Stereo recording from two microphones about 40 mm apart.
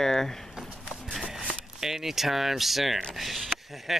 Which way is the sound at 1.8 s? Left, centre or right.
Centre.